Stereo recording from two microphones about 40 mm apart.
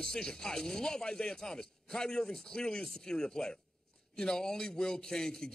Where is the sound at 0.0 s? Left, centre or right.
Centre.